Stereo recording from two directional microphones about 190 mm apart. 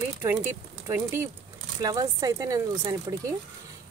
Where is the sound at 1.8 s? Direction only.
20° right (ahead or behind).